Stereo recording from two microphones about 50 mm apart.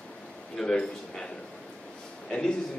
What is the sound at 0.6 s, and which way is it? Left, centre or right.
Speech, centre.